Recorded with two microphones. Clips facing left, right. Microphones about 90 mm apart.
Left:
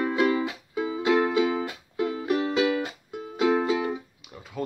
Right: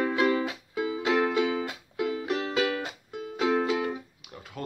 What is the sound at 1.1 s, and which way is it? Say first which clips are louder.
Music: left 3 dB; 10° left (ahead or behind).